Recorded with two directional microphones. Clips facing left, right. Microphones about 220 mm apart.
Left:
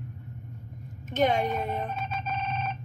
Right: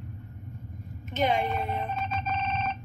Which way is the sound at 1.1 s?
45° left (ahead or behind).